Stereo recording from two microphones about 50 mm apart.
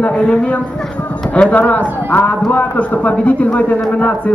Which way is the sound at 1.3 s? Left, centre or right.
Left.